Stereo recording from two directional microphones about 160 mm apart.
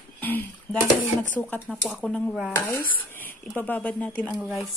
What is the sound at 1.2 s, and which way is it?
Speech, 10° left (ahead or behind).